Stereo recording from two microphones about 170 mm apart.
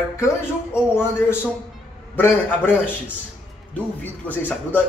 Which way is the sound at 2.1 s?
10° left (ahead or behind).